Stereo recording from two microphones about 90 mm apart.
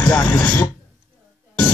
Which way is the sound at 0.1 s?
15° left (ahead or behind).